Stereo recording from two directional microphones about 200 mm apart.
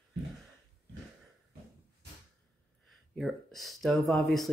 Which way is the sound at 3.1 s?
Centre (ahead or behind).